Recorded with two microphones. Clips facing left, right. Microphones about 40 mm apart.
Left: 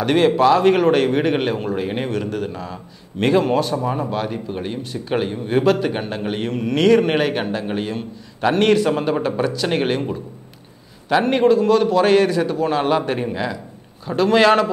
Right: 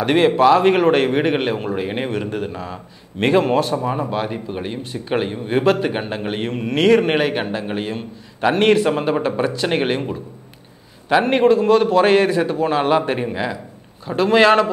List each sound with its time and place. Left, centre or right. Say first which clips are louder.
0.0 s speech: right 1 dB; centre